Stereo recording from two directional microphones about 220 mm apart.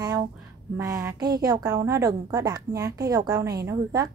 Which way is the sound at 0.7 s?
15° right (ahead or behind).